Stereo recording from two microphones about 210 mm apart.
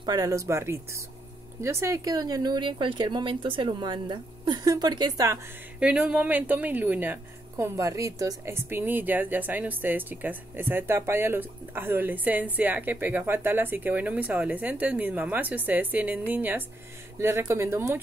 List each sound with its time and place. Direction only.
0.0 s speech: 15° right (ahead or behind)
5.8 s speech: 5° right (ahead or behind)